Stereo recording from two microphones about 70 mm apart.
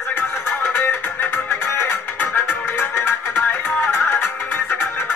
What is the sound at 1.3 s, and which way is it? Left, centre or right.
Music, left.